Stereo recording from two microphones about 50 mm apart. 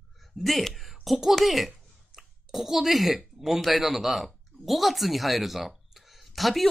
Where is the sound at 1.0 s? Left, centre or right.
Centre.